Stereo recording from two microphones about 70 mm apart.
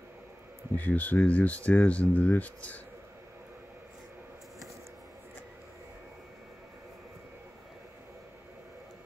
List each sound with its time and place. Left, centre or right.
0.7 s speech: left